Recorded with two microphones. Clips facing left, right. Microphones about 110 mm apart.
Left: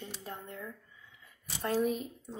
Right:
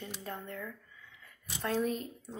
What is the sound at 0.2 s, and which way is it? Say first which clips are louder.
Speech: right 2 dB; 15° left (ahead or behind).